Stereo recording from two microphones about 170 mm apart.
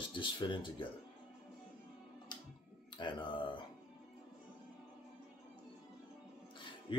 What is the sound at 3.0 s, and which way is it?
Speech, 30° left (ahead or behind).